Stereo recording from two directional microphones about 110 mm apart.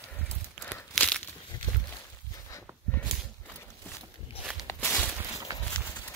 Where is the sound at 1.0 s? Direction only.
15° left (ahead or behind).